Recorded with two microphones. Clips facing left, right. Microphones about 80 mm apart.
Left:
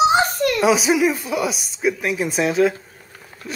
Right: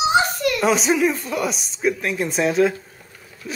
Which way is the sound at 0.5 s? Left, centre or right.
Centre.